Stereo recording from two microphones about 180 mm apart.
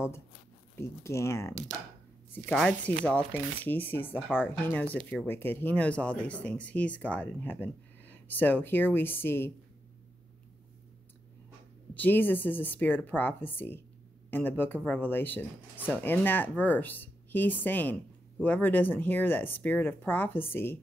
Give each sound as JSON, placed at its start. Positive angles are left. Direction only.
{"t": 0.7, "sound": "speech", "side_deg": 15}
{"t": 2.3, "sound": "speech", "side_deg": 5}
{"t": 11.9, "sound": "speech", "side_deg": 10}